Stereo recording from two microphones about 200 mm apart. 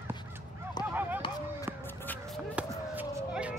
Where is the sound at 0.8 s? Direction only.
20° left (ahead or behind).